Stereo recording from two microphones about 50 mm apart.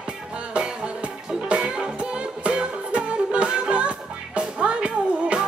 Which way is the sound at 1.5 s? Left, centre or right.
Centre.